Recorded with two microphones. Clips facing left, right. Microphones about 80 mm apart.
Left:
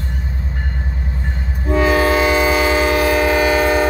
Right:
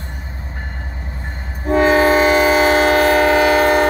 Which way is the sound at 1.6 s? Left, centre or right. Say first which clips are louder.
Right 2 dB; right.